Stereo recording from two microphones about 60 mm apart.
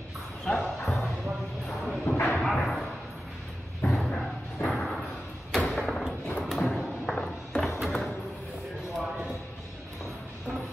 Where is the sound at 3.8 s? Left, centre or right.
Centre.